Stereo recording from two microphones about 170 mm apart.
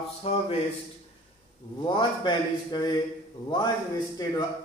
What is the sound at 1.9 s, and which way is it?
A man's voice, 30° left (ahead or behind).